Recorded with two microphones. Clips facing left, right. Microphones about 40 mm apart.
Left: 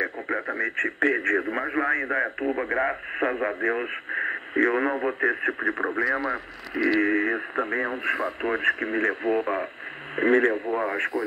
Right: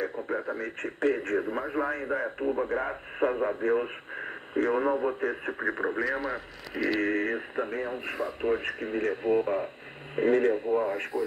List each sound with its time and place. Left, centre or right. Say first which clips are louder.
0.0 s speech: left 3 dB; left
5.9 s speech: left 5 dB; left
7.5 s speech: left 5 dB; left
9.3 s speech: left 1 dB; left
10.1 s speech: left 3 dB; left
10.5 s speech: even; left
10.8 s speech: left 3 dB; left